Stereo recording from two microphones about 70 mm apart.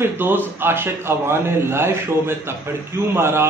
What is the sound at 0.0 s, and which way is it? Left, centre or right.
Speech, right.